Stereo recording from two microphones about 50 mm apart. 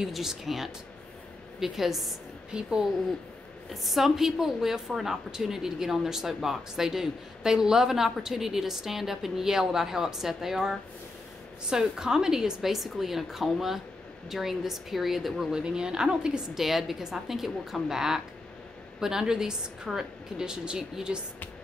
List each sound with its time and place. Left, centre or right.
0.0 s a woman's voice: centre
2.5 s a woman's voice: centre
3.8 s a woman's voice: centre
15.5 s a woman's voice: centre